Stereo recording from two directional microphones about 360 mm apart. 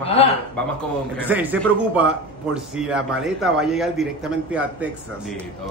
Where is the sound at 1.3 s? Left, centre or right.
Centre.